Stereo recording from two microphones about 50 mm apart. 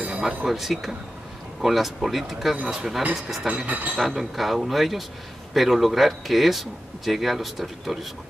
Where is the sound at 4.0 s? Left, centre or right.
Centre.